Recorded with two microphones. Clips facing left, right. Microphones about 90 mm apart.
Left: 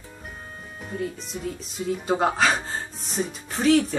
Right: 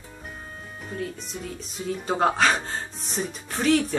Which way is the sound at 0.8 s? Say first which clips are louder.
Left 2 dB; centre (ahead or behind).